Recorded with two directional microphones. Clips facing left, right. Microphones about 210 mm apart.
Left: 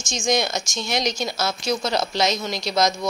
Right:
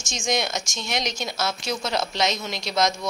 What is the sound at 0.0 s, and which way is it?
A woman's voice, centre (ahead or behind).